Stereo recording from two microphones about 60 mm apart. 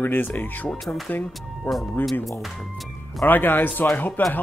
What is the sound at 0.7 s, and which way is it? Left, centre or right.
Speech, centre.